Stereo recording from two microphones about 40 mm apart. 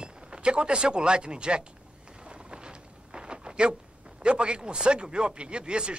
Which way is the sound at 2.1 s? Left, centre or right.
Right.